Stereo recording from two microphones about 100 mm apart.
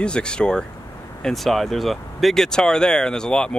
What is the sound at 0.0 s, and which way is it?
Speech, 10° left (ahead or behind).